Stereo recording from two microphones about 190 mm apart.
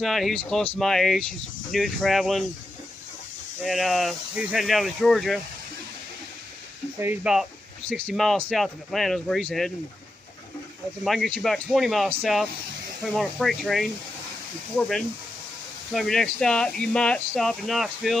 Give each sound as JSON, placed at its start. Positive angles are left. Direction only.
{"t": 0.0, "sound": "speech", "side_deg": 0}
{"t": 3.6, "sound": "speech", "side_deg": 0}
{"t": 7.0, "sound": "speech", "side_deg": -5}
{"t": 11.1, "sound": "speech", "side_deg": 5}